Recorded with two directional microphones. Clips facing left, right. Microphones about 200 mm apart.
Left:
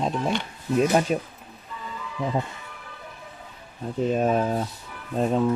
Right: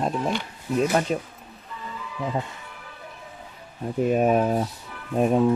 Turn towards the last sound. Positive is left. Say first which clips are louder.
# right 3 dB
turn(degrees=-15)  # may be behind; listen again after turning